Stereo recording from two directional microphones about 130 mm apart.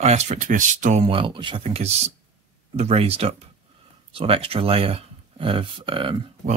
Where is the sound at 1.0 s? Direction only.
40° right (ahead or behind).